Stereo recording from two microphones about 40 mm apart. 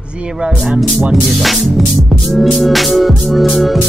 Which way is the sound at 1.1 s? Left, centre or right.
Centre.